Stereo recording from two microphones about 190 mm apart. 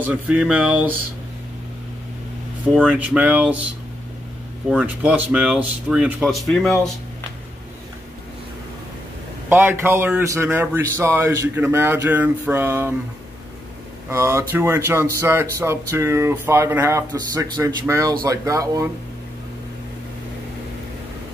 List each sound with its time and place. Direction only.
0.0 s speech: 5° right (ahead or behind)
2.7 s speech: 5° right (ahead or behind)
4.6 s speech: 5° right (ahead or behind)
9.5 s speech: 10° right (ahead or behind)
14.0 s speech: 10° right (ahead or behind)